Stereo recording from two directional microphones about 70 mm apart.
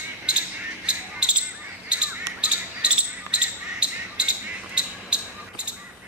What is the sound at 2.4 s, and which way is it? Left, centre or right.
Basketball bounce, centre.